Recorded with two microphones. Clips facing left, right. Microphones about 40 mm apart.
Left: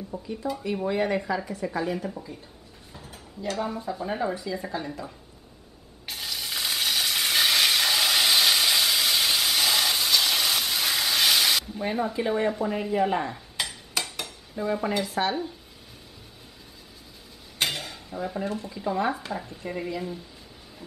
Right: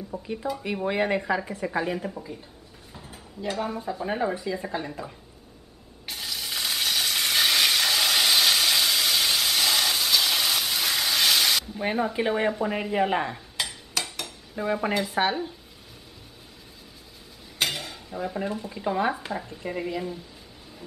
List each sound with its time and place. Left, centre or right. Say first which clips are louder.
0.1 s speech: right 1 dB; right
2.0 s speech: even; centre
3.5 s speech: even; centre
6.0 s frying: even; centre
11.8 s speech: right 1 dB; right
13.6 s stir: even; centre
14.5 s speech: right 1 dB; right
17.6 s cutlery: even; centre
18.7 s speech: right 1 dB; centre